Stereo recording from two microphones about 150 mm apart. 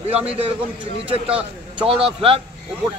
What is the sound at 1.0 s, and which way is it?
A man's voice, 40° right (ahead or behind).